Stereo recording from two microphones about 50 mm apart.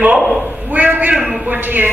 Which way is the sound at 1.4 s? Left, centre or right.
Right.